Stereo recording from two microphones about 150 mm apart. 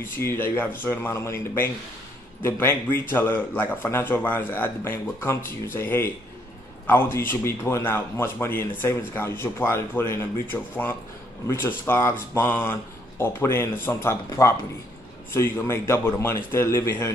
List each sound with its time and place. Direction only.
0.0 s a man's voice: 15° left (ahead or behind)